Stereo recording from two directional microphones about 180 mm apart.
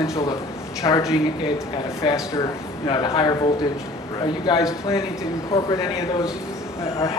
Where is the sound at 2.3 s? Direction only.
20° left (ahead or behind).